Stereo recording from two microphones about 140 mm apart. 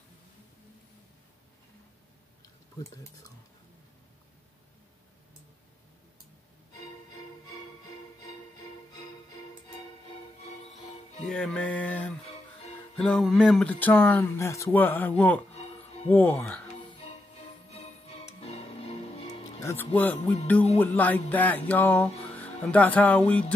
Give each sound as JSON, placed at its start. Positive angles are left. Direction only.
{"t": 3.0, "sound": "speech", "side_deg": 25}
{"t": 11.2, "sound": "music", "side_deg": 5}
{"t": 17.6, "sound": "music", "side_deg": 45}
{"t": 19.6, "sound": "music", "side_deg": 15}